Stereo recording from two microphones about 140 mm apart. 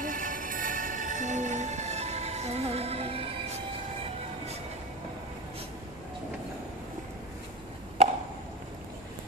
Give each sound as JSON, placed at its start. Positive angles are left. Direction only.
{"t": 0.0, "sound": "music", "side_deg": -70}